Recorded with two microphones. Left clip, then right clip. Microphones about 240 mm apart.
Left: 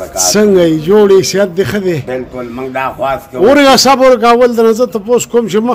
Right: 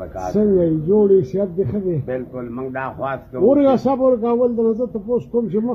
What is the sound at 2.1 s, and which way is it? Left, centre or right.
Speech, centre.